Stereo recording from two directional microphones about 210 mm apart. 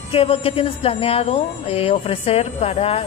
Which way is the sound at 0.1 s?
25° left (ahead or behind).